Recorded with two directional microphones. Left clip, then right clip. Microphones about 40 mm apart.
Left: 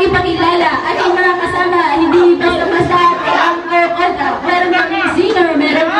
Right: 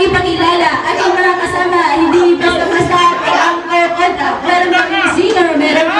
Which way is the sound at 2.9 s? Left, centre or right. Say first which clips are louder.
Even; centre.